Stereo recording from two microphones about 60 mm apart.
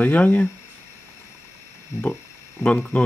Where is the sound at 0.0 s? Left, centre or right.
Left.